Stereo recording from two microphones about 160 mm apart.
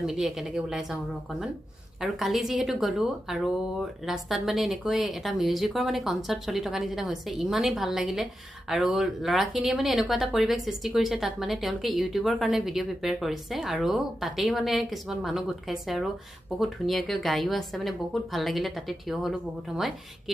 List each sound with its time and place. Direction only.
0.0 s a woman's voice: centre (ahead or behind)
2.0 s a woman's voice: centre (ahead or behind)